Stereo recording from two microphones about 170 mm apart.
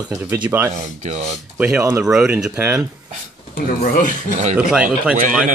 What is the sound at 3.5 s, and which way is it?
Speech, 60° left (ahead or behind).